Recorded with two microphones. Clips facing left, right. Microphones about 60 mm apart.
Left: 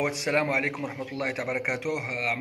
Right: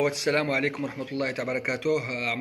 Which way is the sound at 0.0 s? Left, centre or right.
Left.